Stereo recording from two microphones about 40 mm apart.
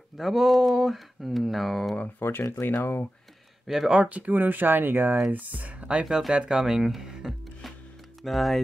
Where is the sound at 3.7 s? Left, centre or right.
Centre.